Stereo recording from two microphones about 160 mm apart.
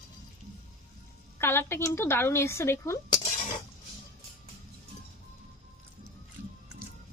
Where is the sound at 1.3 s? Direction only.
15° left (ahead or behind).